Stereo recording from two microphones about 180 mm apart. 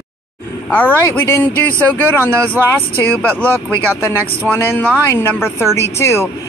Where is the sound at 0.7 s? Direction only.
10° left (ahead or behind).